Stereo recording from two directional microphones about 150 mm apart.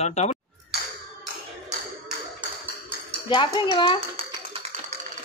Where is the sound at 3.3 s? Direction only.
30° left (ahead or behind).